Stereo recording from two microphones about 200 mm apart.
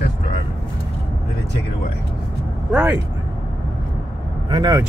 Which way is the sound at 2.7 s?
10° right (ahead or behind).